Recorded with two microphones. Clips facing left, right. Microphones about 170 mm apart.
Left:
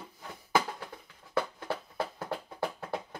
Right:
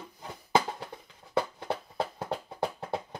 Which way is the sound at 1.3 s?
20° right (ahead or behind).